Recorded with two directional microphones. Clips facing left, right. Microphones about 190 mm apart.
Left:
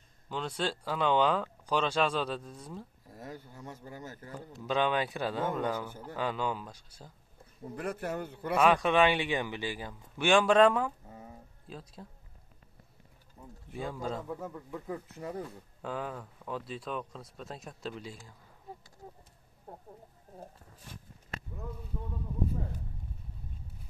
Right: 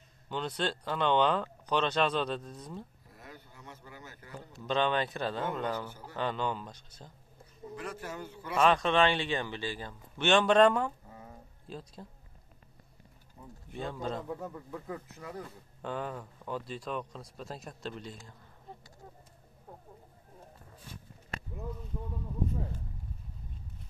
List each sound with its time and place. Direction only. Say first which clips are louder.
0.3 s speech: even; centre (ahead or behind)
3.1 s a sound: left 7 dB; 40° left (ahead or behind)
3.6 s a man's voice: left 5 dB; 40° left (ahead or behind)
4.4 s a man's voice: even; 10° left (ahead or behind)
7.7 s a man's voice: left 5 dB; 55° left (ahead or behind)
8.5 s a man's voice: left 1 dB; 10° left (ahead or behind)
13.7 s speech: even; 5° left (ahead or behind)
15.1 s speech: left 4 dB; 30° left (ahead or behind)
15.8 s speech: even; 5° left (ahead or behind)